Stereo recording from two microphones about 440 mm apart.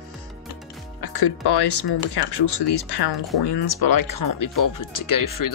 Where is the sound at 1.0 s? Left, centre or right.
Left.